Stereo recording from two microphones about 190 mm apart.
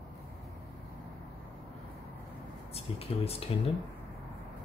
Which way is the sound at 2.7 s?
30° left (ahead or behind).